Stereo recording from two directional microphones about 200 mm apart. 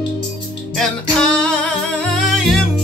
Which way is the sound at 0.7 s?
5° left (ahead or behind).